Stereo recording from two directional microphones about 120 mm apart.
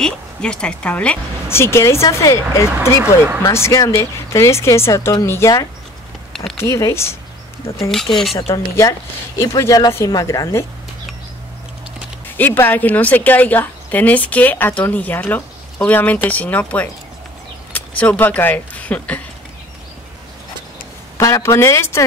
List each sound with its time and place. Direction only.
0.0 s a woman's voice: 5° left (ahead or behind); by 7.2 s 20° left (ahead or behind)
7.9 s speech: 5° left (ahead or behind)
9.4 s a woman's voice: 25° left (ahead or behind)
12.4 s a woman's voice: 15° left (ahead or behind)
21.2 s a woman's voice: 25° left (ahead or behind)